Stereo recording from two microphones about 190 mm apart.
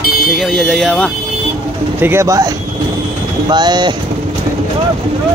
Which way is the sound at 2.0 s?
15° right (ahead or behind).